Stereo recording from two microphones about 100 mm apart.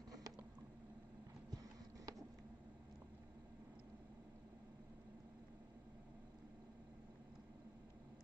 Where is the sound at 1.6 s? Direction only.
35° right (ahead or behind).